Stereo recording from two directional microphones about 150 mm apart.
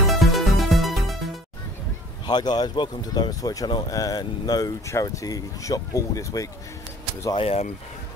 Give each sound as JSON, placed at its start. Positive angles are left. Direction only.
{"t": 0.0, "sound": "music", "side_deg": 0}
{"t": 2.2, "sound": "speech", "side_deg": 30}
{"t": 7.3, "sound": "speech", "side_deg": 40}